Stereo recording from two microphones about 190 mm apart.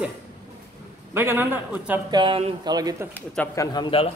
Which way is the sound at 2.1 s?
25° right (ahead or behind).